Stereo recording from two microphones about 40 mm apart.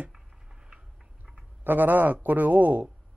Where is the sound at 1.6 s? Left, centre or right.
Right.